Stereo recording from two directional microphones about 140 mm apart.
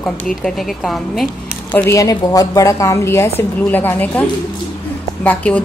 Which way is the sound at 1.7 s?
20° left (ahead or behind).